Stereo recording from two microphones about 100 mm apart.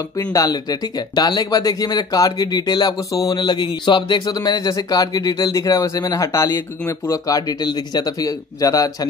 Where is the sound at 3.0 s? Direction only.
35° left (ahead or behind).